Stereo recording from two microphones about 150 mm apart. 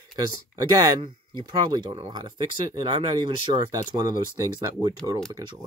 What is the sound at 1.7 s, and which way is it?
Speech, 35° right (ahead or behind).